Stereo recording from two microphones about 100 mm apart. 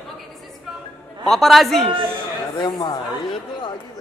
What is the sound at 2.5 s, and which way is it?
Speech, 45° left (ahead or behind).